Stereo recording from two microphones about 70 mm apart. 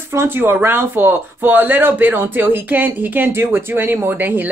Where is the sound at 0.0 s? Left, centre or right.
Right.